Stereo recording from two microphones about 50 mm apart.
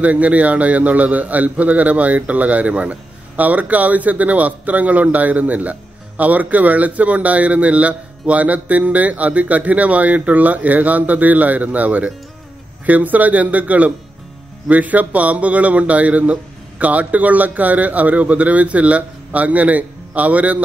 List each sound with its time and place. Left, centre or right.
0.0 s a man's voice: right